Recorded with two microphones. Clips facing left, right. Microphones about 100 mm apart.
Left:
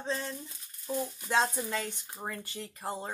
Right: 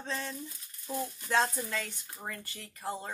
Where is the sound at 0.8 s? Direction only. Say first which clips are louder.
Left 2 dB; 10° left (ahead or behind).